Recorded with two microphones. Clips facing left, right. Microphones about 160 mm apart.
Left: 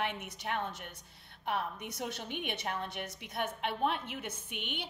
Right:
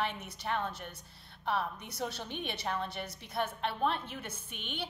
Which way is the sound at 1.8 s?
20° left (ahead or behind).